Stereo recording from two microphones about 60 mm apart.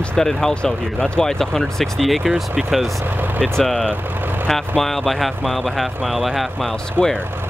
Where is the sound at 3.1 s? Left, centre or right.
Right.